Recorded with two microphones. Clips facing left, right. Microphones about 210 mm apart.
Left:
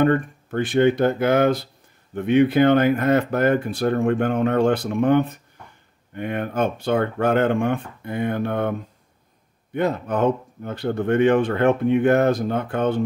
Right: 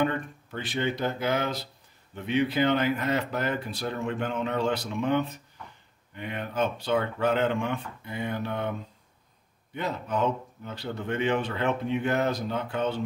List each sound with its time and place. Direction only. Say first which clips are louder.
0.0 s speech: left 9 dB; 50° left (ahead or behind)
9.8 s speech: left 7 dB; 55° left (ahead or behind)